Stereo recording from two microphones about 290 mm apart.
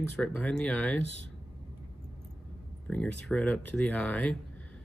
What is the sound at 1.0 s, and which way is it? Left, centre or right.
Speech, right.